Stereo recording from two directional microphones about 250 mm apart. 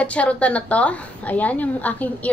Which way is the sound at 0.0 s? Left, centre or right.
Centre.